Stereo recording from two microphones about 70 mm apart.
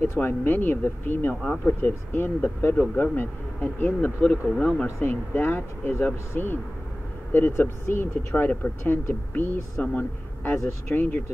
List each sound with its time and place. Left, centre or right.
0.0 s speech: left
4.8 s speech: left
9.8 s speech: left